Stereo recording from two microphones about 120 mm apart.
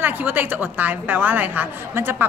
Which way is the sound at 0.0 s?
15° right (ahead or behind).